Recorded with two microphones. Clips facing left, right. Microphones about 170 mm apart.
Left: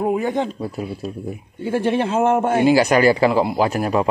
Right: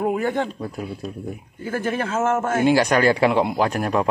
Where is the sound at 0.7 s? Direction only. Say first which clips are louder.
Left 3 dB; 5° left (ahead or behind).